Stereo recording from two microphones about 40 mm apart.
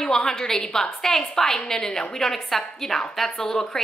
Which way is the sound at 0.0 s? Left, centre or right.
Centre.